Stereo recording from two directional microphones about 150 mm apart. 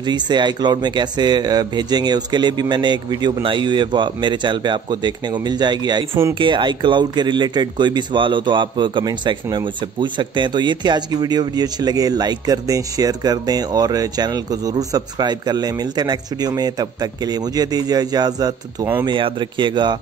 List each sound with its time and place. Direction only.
0.0 s speech: 30° right (ahead or behind)